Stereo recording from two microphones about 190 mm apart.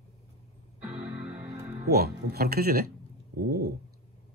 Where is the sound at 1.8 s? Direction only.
55° right (ahead or behind).